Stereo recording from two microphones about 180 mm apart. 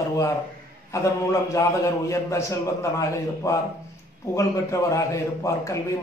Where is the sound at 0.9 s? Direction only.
15° left (ahead or behind).